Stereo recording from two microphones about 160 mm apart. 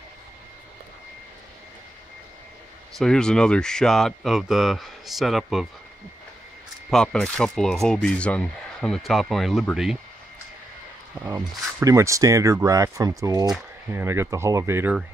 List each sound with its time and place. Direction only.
3.0 s speech: 5° left (ahead or behind)
6.9 s speech: 5° left (ahead or behind)
11.2 s speech: 20° right (ahead or behind)